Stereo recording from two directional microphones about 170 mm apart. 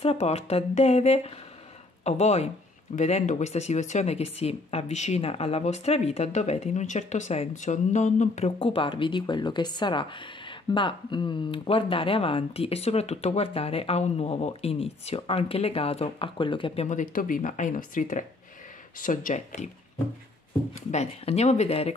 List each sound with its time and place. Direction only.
0.0 s speech: 35° left (ahead or behind)
16.8 s speech: 50° left (ahead or behind)
20.9 s speech: 40° left (ahead or behind)